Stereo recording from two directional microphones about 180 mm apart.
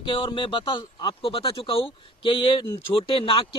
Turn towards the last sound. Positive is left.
turn(degrees=30)  # may be behind; listen again after turning